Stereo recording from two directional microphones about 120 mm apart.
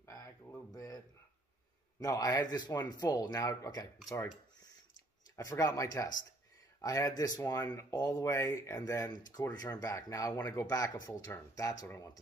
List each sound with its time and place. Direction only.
0.0 s a sound: 25° left (ahead or behind)
2.0 s speech: 30° left (ahead or behind)
5.3 s speech: 30° left (ahead or behind)